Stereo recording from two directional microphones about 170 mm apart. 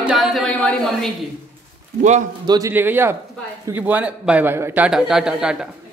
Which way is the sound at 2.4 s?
25° right (ahead or behind).